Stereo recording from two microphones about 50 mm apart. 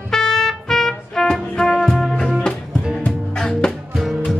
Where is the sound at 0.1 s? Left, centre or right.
Centre.